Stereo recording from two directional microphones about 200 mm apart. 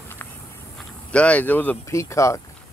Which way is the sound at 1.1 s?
5° left (ahead or behind).